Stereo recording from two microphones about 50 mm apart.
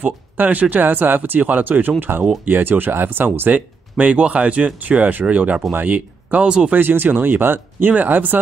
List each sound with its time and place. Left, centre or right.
0.0 s speech: right
3.9 s speech: centre
6.4 s speech: centre
6.7 s speech: right